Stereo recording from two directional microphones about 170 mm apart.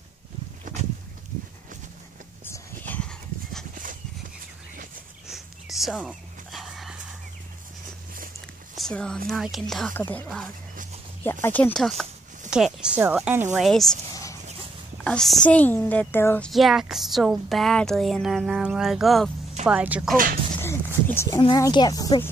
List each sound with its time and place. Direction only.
0.7 s boat: 50° right (ahead or behind)
2.4 s dog: 10° left (ahead or behind)
5.3 s a sound: centre (ahead or behind)
8.7 s speech: 5° left (ahead or behind)
11.4 s speech: 10° left (ahead or behind); by 13.6 s 10° right (ahead or behind)
13.6 s speech: centre (ahead or behind)
15.0 s speech: centre (ahead or behind)
16.4 s speech: centre (ahead or behind)
20.6 s a sound: 15° left (ahead or behind)
21.4 s speech: 25° left (ahead or behind)